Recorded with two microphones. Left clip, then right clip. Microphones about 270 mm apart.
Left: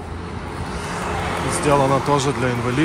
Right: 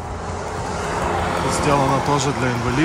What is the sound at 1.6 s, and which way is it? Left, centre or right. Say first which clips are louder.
Speech: left 2 dB; centre.